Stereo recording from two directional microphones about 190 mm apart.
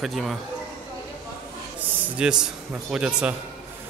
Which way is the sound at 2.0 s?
5° right (ahead or behind).